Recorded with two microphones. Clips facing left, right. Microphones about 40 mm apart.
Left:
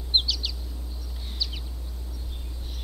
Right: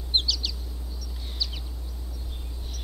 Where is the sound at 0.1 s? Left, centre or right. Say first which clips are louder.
Left 1 dB; centre.